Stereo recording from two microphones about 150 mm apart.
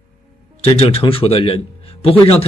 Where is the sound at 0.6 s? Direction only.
40° left (ahead or behind).